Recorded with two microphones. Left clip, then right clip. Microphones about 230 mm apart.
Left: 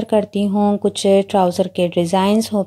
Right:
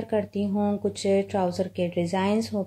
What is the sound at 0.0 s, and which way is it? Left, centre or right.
Speech, left.